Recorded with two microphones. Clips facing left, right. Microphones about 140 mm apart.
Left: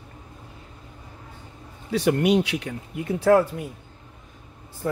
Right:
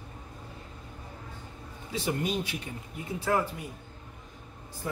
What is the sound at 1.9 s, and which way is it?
Speech, 70° left (ahead or behind).